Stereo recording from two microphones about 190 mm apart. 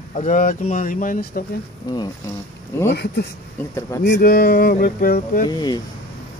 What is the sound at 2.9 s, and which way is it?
Speech, 60° left (ahead or behind).